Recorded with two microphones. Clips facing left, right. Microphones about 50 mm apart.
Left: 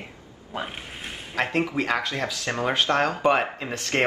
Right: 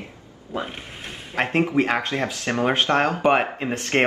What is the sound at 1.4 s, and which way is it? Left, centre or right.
Speech, right.